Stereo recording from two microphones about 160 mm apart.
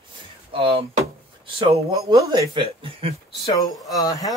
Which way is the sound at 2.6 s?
35° right (ahead or behind).